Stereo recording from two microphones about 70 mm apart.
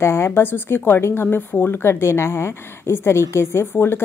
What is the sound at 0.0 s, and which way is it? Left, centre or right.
A woman's voice, left.